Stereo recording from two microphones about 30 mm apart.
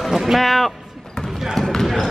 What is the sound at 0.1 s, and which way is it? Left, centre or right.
Speech, centre.